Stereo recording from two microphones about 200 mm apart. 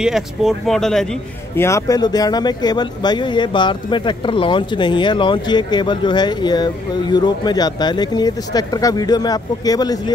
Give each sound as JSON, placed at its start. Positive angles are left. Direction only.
{"t": 0.0, "sound": "speech", "side_deg": 0}
{"t": 1.5, "sound": "speech", "side_deg": 15}